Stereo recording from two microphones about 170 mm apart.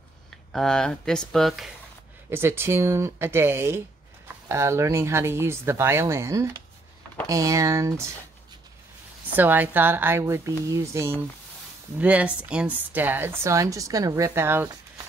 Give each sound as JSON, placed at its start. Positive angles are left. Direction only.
{"t": 0.5, "sound": "speech", "side_deg": 5}
{"t": 2.3, "sound": "a woman's voice", "side_deg": -15}
{"t": 9.3, "sound": "a woman's voice", "side_deg": -10}